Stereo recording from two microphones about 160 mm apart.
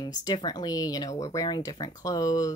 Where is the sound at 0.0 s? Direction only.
25° left (ahead or behind).